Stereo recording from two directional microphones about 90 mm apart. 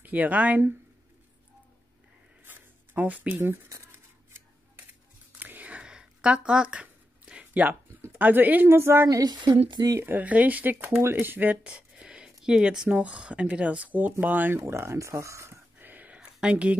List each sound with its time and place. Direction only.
0.0 s speech: 20° right (ahead or behind)
2.4 s writing: 20° right (ahead or behind)
3.6 s scissors: 30° right (ahead or behind)
5.4 s a sound: 20° right (ahead or behind)
8.1 s a woman's voice: 20° right (ahead or behind)
9.2 s speech: 50° right (ahead or behind)
9.9 s a woman's voice: 20° right (ahead or behind)
14.6 s a sound: 30° right (ahead or behind); by 16.7 s 10° right (ahead or behind)